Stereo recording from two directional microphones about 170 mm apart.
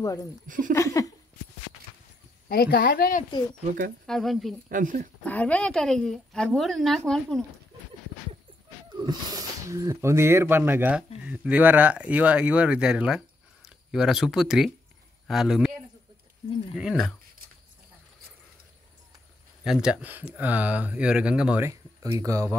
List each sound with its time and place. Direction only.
0.0 s speech: 20° left (ahead or behind)
0.5 s speech: 50° right (ahead or behind)
0.7 s a sound: 20° left (ahead or behind)
2.4 s a woman's voice: 65° left (ahead or behind)
4.0 s a woman's voice: centre (ahead or behind)
4.6 s speech: 55° right (ahead or behind)
5.2 s a woman's voice: 10° left (ahead or behind)
8.9 s speech: 25° right (ahead or behind); by 15.7 s centre (ahead or behind)
16.7 s a woman's voice: 5° right (ahead or behind)
19.6 s a woman's voice: 5° right (ahead or behind)
21.6 s speech: 20° right (ahead or behind)